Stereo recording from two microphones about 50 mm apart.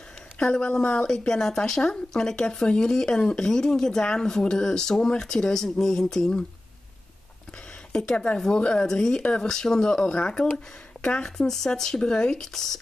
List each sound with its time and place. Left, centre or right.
0.4 s a woman's voice: centre
8.4 s a woman's voice: centre
11.2 s speech: centre